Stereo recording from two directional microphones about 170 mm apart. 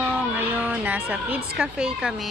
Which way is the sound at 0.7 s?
10° right (ahead or behind).